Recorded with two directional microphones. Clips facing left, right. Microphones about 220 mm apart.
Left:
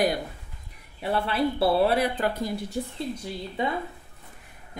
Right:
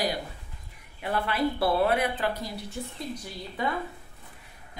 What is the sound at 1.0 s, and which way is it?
A woman's voice, 30° left (ahead or behind).